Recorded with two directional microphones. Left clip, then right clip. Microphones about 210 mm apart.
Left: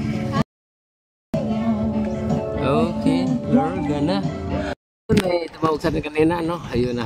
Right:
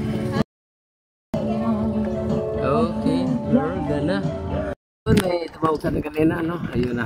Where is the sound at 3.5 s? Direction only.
10° left (ahead or behind).